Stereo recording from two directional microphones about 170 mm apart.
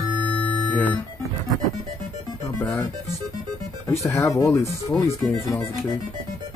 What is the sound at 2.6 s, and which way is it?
Music, 10° left (ahead or behind).